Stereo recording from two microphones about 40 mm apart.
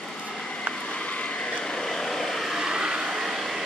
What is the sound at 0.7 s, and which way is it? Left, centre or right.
Vehicle, left.